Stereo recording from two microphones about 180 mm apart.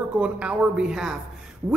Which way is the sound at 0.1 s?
5° right (ahead or behind).